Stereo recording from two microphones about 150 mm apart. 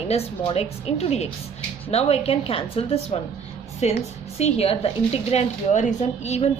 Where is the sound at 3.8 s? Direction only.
50° left (ahead or behind).